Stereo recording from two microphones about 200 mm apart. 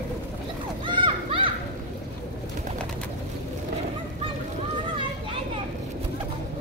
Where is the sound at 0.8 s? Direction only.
25° right (ahead or behind).